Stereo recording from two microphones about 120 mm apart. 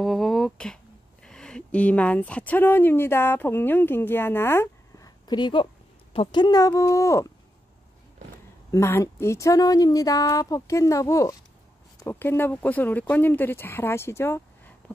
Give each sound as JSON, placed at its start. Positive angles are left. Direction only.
{"t": 0.0, "sound": "a sound", "side_deg": 0}
{"t": 1.2, "sound": "speech", "side_deg": 5}
{"t": 8.7, "sound": "speech", "side_deg": 20}